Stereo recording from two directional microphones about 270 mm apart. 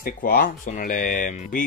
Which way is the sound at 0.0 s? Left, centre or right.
Left.